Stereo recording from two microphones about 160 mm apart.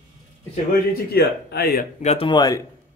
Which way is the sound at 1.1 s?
85° left.